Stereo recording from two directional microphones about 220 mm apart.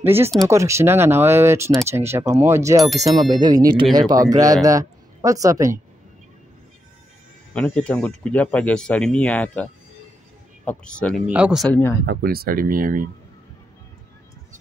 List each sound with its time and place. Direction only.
0.0 s speech: 10° right (ahead or behind)
7.5 s speech: 5° left (ahead or behind)
12.1 s speech: 45° right (ahead or behind)